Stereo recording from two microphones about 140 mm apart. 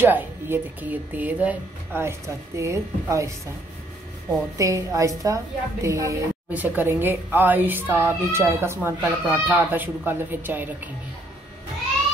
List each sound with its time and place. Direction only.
0.0 s speech: 15° right (ahead or behind)
4.6 s a woman's voice: 25° right (ahead or behind)